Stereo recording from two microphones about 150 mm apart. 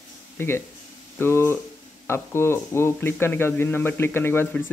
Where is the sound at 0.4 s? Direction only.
15° left (ahead or behind).